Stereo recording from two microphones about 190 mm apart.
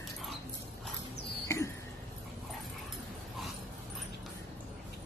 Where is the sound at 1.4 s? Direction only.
15° left (ahead or behind).